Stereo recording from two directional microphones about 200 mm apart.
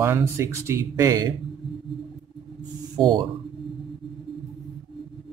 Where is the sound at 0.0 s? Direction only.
10° right (ahead or behind).